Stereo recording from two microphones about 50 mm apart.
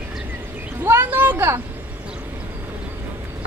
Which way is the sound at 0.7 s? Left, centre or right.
Right.